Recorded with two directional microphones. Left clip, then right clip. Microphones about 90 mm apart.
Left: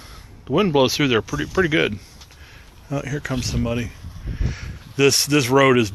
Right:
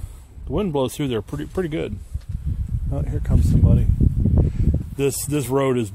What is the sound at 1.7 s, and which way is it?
Speech, 20° right (ahead or behind).